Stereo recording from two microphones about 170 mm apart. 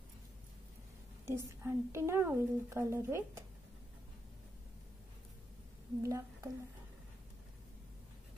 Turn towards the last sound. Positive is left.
turn(degrees=-20)  # may be behind; listen again after turning